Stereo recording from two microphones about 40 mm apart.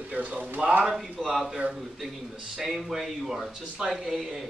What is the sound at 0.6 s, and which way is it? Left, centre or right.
Speech, centre.